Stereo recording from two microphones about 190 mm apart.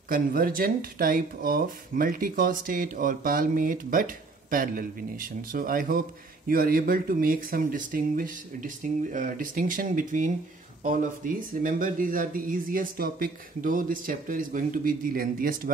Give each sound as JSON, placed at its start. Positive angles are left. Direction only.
{"t": 0.1, "sound": "speech", "side_deg": -50}